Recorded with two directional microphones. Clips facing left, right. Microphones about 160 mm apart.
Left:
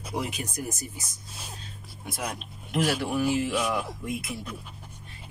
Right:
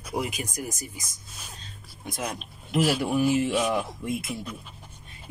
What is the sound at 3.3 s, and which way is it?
Speech, 25° right (ahead or behind).